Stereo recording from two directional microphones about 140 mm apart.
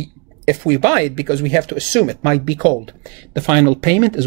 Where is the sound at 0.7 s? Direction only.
35° right (ahead or behind).